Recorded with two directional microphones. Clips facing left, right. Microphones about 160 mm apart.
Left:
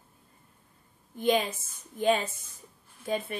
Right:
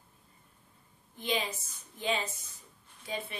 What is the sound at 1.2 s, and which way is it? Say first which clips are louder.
A woman's voice: left 8 dB; 50° left (ahead or behind).